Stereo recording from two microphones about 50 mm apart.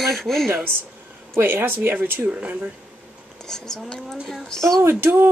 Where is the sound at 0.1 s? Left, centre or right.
Centre.